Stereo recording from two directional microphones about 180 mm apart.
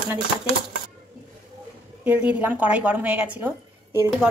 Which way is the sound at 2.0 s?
10° right (ahead or behind).